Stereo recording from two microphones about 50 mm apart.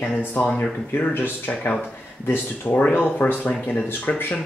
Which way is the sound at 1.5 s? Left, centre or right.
Left.